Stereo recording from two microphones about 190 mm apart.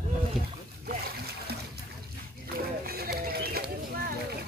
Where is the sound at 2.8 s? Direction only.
55° right (ahead or behind).